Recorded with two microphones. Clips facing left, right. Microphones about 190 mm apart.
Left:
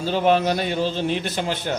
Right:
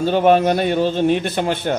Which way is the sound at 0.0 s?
55° right (ahead or behind).